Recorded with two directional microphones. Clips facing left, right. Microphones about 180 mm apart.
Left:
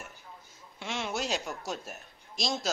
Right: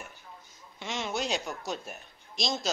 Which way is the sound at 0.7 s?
5° left (ahead or behind).